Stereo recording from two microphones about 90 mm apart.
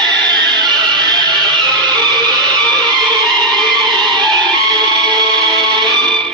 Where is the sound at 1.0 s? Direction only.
50° right (ahead or behind).